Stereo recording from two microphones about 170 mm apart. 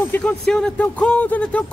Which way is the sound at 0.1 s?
5° left (ahead or behind).